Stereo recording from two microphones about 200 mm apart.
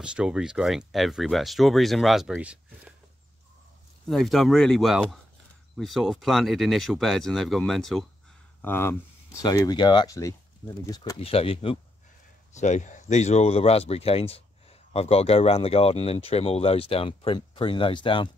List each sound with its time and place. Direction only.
0.0 s speech: 5° right (ahead or behind)
4.1 s speech: centre (ahead or behind)
8.6 s speech: 10° left (ahead or behind)